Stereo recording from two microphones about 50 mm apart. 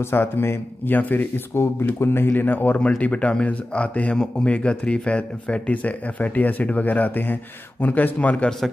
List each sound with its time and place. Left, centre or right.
0.0 s speech: left
0.9 s speech: left
3.0 s speech: left